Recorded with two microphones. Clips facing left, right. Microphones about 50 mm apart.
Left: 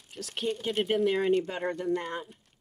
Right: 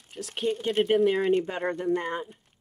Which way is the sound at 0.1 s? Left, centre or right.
Centre.